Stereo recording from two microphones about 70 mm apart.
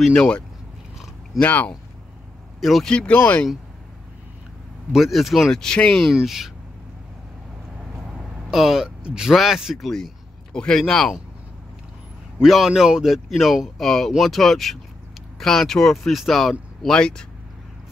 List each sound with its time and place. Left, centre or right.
0.1 s speech: centre
1.4 s speech: left
2.6 s speech: centre
3.1 s speech: left
4.9 s speech: centre
6.0 s speech: centre
7.9 s speech: centre
12.4 s speech: centre